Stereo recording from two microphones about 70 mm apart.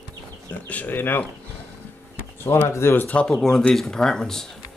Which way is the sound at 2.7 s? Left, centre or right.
Left.